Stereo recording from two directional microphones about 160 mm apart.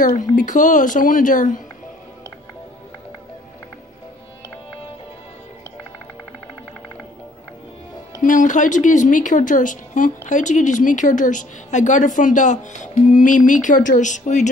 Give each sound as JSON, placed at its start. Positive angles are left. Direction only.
{"t": 0.0, "sound": "a woman's voice", "side_deg": 55}
{"t": 8.2, "sound": "speech", "side_deg": 55}